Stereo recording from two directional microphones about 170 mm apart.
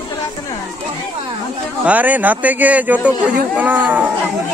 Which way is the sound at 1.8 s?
10° right (ahead or behind).